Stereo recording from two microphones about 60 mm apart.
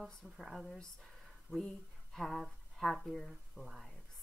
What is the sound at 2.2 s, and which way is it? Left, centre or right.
Speech, centre.